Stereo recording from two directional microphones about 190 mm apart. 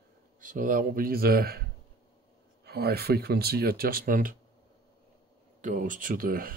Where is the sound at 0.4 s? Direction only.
45° right (ahead or behind).